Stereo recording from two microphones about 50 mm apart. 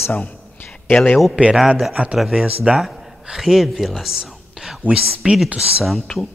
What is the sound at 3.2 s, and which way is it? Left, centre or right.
Speech, centre.